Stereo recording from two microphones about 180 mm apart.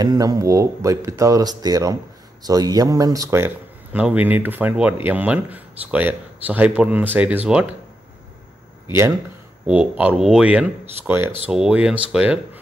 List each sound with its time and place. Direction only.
0.0 s speech: 20° right (ahead or behind)
9.7 s speech: 5° right (ahead or behind)